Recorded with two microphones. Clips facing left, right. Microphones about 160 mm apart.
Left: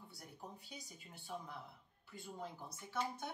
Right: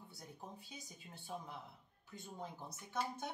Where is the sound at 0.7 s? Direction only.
20° right (ahead or behind).